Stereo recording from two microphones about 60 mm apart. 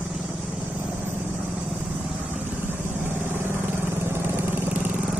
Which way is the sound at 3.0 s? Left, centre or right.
Right.